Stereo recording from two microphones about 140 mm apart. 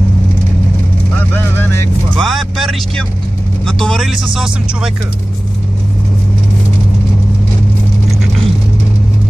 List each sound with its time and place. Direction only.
1.3 s vehicle: 15° left (ahead or behind)
2.1 s speech: centre (ahead or behind)